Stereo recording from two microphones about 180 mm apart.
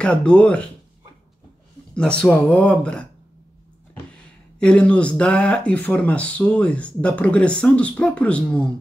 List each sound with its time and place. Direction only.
0.0 s speech: 5° left (ahead or behind)
2.0 s speech: 5° left (ahead or behind)
4.6 s speech: 5° left (ahead or behind)